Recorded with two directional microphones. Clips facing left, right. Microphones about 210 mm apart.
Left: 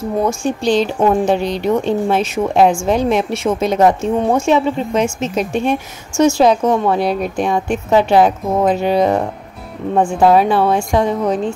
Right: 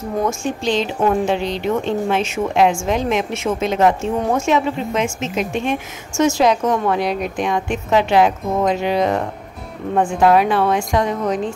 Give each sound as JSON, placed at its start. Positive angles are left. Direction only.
{"t": 0.3, "sound": "a woman's voice", "side_deg": 35}